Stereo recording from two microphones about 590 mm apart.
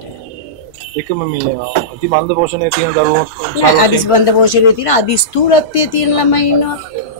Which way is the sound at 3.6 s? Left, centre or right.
Left.